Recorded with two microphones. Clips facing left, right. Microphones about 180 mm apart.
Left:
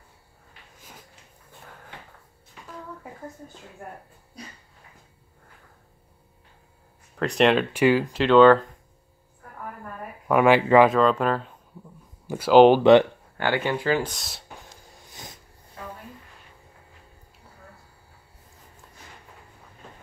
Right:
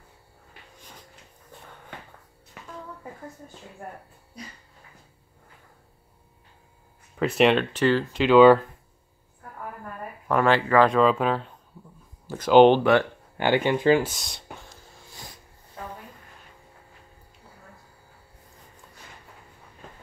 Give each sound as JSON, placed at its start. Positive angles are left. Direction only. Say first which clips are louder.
{"t": 0.7, "sound": "a sound", "louder": "left 1 dB", "side_deg": 5}
{"t": 7.2, "sound": "speech", "louder": "even", "side_deg": -5}
{"t": 7.7, "sound": "speech", "louder": "left 2 dB", "side_deg": 10}
{"t": 8.2, "sound": "speech", "louder": "right 1 dB", "side_deg": -5}
{"t": 10.2, "sound": "speech", "louder": "left 3 dB", "side_deg": 10}
{"t": 10.9, "sound": "speech", "louder": "even", "side_deg": 0}
{"t": 13.4, "sound": "speech", "louder": "right 3 dB", "side_deg": -20}
{"t": 14.0, "sound": "speech", "louder": "even", "side_deg": 0}
{"t": 15.0, "sound": "snort", "louder": "left 1 dB", "side_deg": 20}